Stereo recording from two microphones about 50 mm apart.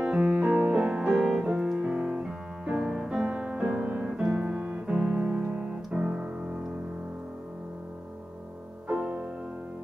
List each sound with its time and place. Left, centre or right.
0.0 s music: right
0.7 s music: right
5.6 s piano: centre
8.8 s music: right